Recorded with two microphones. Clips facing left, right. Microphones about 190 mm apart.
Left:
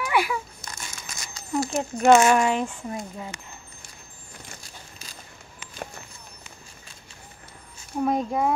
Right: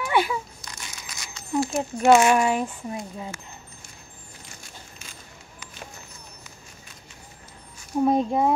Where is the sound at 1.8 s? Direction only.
10° right (ahead or behind).